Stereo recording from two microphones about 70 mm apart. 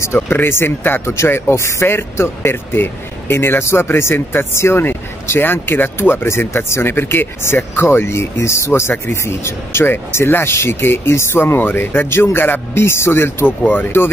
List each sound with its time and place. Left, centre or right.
0.0 s speech: left